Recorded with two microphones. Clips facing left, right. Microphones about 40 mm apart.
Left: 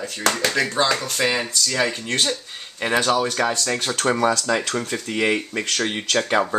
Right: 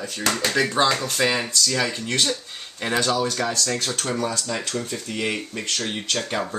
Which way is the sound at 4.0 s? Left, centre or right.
Left.